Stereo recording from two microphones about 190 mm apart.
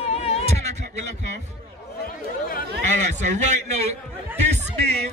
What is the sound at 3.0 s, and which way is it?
A man's voice, 40° right (ahead or behind).